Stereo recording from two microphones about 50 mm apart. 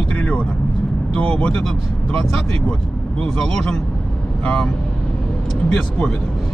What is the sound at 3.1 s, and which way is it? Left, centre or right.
Speech, centre.